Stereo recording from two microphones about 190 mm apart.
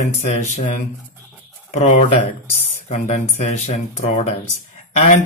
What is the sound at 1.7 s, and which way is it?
Speech, 40° left (ahead or behind).